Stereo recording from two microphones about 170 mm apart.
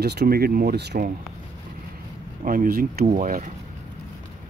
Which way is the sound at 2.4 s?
55° right (ahead or behind).